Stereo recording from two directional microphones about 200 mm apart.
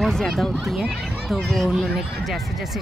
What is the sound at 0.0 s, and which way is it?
Speech, centre (ahead or behind).